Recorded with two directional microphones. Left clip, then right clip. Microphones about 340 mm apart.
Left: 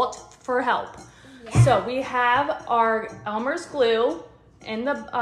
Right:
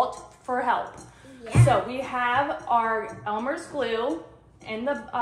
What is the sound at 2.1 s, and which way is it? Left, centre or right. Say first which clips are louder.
A woman's voice: left 3 dB; left.